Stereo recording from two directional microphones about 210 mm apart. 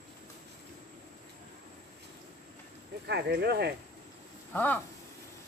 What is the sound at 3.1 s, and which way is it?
Speech, 50° right (ahead or behind).